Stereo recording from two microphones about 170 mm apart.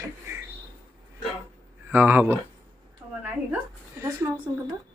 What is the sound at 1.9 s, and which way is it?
Speech, 10° right (ahead or behind).